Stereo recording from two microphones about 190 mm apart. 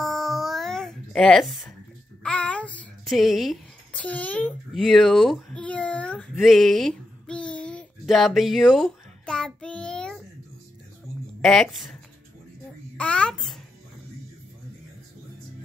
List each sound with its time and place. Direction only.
0.0 s music: centre (ahead or behind)
2.2 s child singing: 5° left (ahead or behind)
11.4 s speech: centre (ahead or behind)
12.9 s a sound: 5° left (ahead or behind)